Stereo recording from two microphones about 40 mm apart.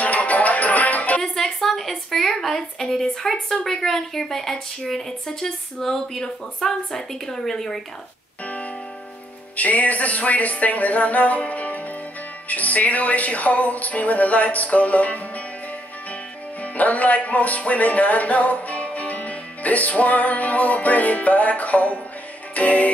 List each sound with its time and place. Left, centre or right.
0.0 s music: left
1.2 s a woman's voice: centre
9.6 s music: left
16.6 s music: left